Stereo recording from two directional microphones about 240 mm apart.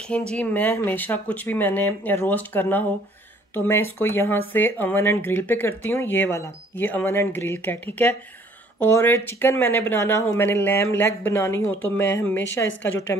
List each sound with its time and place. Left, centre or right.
0.3 s speech: centre
12.6 s a woman's voice: left